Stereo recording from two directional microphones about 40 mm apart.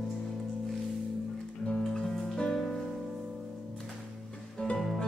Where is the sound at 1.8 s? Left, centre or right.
Centre.